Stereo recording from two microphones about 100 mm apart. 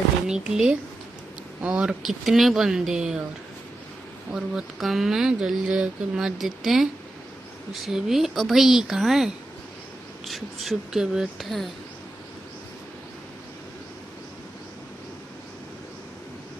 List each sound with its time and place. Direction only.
0.3 s speech: 5° right (ahead or behind)
4.3 s speech: 5° right (ahead or behind)